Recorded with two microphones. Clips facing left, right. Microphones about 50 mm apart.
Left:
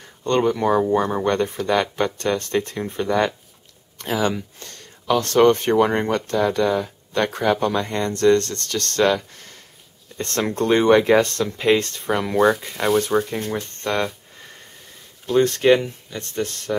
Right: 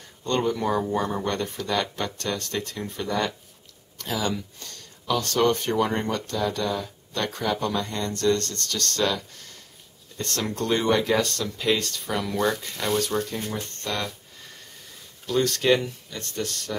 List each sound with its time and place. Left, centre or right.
0.2 s speech: left
0.5 s speech: centre
12.4 s speech: centre
13.0 s speech: left
15.2 s speech: left